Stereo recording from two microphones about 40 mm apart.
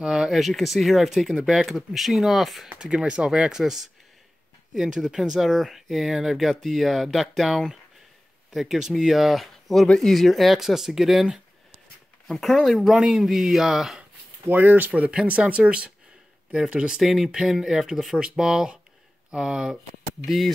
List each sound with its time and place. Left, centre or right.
0.2 s speech: centre
2.8 s speech: right
3.5 s speech: centre
5.4 s speech: centre
12.3 s speech: centre
12.9 s speech: centre
14.5 s speech: right
16.5 s speech: right
17.0 s speech: centre
20.2 s speech: centre